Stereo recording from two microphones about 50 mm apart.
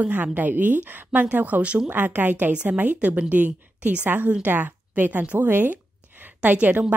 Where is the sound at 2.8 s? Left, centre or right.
Right.